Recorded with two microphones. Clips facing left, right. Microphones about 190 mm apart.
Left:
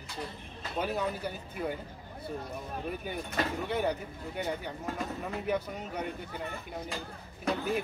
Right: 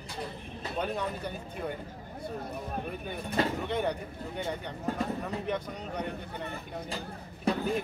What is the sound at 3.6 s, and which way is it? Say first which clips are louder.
Speech: even; 5° left (ahead or behind).